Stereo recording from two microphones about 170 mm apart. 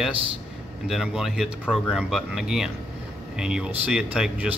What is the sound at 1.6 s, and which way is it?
Speech, 10° left (ahead or behind).